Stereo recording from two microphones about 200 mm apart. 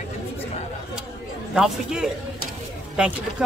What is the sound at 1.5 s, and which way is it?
Speech, 5° right (ahead or behind).